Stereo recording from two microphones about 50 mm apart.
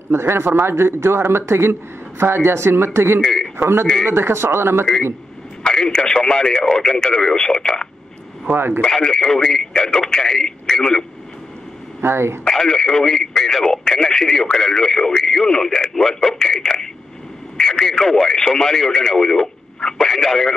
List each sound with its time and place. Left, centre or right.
0.1 s speech: right
3.2 s a man's voice: centre
4.1 s speech: right
5.6 s speech: centre
8.5 s speech: right
8.8 s speech: centre
12.0 s speech: right
12.4 s speech: centre